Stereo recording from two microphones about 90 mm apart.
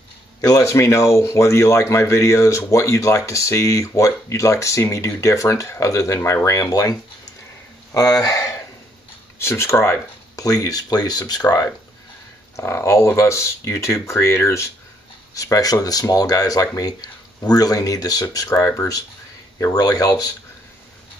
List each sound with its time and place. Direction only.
0.4 s speech: 40° left (ahead or behind)
12.5 s speech: 30° left (ahead or behind)
19.7 s speech: 45° left (ahead or behind)